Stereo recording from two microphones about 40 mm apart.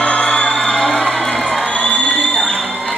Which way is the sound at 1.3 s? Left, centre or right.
Centre.